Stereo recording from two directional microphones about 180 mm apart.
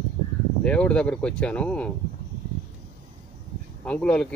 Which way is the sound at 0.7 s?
5° left (ahead or behind).